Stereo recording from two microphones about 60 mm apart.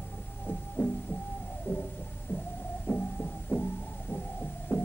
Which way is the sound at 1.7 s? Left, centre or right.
Left.